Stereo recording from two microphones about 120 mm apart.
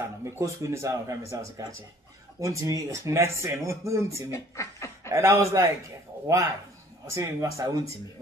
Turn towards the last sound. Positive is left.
turn(degrees=-25)  # may be behind; listen again after turning